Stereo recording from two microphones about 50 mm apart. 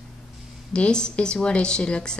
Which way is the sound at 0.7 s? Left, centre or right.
Centre.